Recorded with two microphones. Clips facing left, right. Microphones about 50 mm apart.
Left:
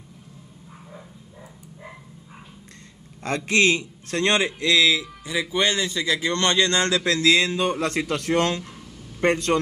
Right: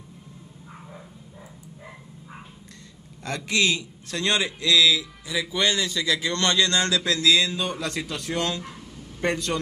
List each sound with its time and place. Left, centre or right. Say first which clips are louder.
3.3 s a man's voice: left 4 dB; left